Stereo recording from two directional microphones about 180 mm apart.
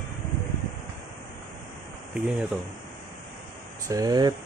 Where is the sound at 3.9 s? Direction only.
20° right (ahead or behind).